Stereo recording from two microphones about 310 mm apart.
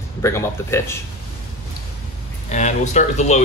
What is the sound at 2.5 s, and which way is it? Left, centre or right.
Speech, left.